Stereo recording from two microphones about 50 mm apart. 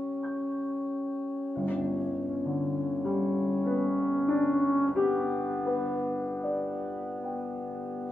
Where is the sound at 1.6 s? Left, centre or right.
Left.